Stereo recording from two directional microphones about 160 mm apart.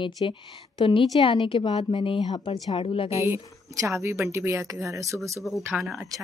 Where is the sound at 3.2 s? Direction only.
15° right (ahead or behind).